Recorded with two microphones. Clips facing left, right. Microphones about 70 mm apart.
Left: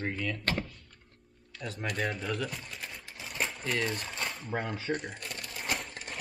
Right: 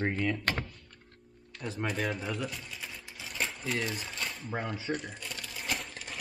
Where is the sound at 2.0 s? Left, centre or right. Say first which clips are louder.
Left 1 dB; centre.